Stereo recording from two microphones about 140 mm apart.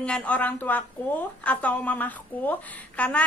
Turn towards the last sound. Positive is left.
turn(degrees=10)  # may be behind; listen again after turning